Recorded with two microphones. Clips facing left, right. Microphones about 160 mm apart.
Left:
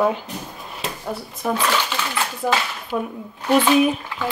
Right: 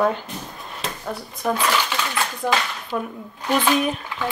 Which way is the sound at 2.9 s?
10° left (ahead or behind).